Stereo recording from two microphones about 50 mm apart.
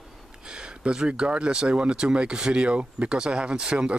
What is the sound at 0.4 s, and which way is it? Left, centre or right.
Speech, centre.